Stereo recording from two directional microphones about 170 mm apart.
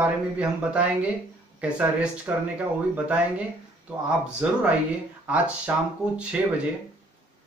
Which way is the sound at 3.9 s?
5° right (ahead or behind).